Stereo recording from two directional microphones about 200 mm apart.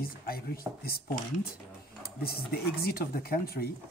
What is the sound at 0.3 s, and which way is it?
Speech, 50° left (ahead or behind).